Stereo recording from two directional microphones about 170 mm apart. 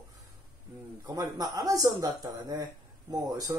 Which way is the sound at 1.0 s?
25° right (ahead or behind).